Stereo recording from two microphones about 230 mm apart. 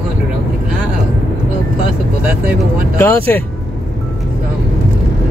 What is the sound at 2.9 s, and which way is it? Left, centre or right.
Speech, centre.